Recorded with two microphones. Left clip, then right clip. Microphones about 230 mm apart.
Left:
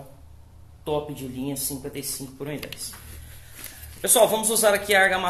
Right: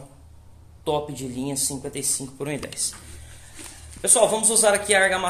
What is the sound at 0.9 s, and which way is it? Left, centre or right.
Speech, right.